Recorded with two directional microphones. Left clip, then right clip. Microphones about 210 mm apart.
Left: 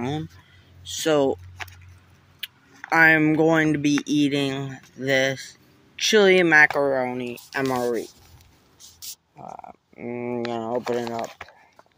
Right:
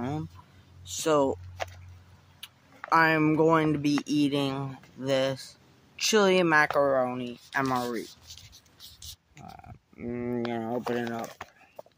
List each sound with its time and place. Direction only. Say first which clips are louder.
0.8 s speech: left 4 dB; 10° left (ahead or behind)
2.4 s speech: left 7 dB; 10° left (ahead or behind); by 8.0 s 10° right (ahead or behind)
9.4 s speech: left 9 dB; 15° right (ahead or behind)